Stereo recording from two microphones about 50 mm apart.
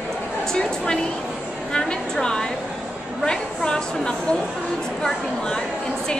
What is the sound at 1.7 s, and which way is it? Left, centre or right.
A woman's voice, centre.